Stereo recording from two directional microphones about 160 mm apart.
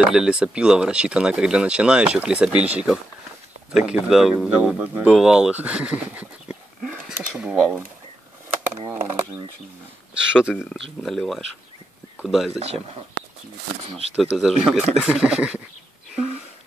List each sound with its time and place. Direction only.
0.0 s speech: 5° right (ahead or behind)
6.8 s a sound: centre (ahead or behind)
7.2 s speech: 10° right (ahead or behind)
10.1 s speech: 5° right (ahead or behind)
13.8 s speech: 40° right (ahead or behind)
14.1 s speech: 5° right (ahead or behind)